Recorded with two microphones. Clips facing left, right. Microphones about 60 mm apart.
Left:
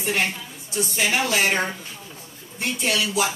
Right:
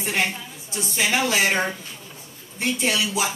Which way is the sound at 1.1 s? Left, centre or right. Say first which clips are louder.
Right 1 dB; right.